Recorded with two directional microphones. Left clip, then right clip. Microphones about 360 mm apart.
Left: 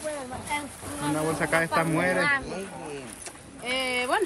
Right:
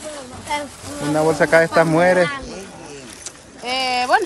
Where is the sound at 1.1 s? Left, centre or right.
Centre.